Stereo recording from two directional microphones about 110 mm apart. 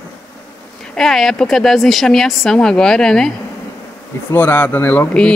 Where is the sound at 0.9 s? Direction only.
Centre (ahead or behind).